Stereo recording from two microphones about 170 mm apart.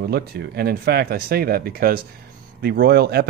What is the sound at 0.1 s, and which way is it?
Speech, 70° right (ahead or behind).